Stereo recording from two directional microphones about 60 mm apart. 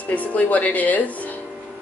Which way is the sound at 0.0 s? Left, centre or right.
Left.